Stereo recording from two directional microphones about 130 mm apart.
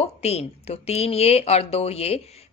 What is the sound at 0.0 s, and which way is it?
A woman's voice, 55° left (ahead or behind).